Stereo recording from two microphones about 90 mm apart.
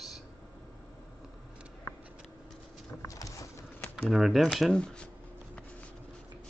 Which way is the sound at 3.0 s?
35° left (ahead or behind).